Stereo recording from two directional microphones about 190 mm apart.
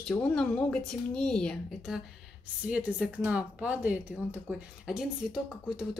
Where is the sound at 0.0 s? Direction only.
5° left (ahead or behind).